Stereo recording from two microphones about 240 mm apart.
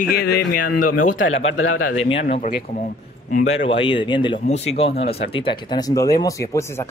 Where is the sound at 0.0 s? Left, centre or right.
Left.